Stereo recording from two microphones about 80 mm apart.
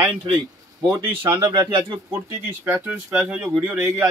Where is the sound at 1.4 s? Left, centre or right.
Right.